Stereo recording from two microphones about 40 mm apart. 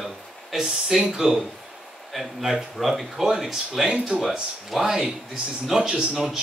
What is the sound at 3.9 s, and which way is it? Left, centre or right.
Speech, right.